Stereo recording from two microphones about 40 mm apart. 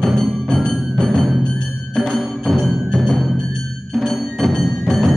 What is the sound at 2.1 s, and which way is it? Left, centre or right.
Music, centre.